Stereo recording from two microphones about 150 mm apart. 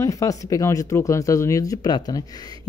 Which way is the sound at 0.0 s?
20° left (ahead or behind).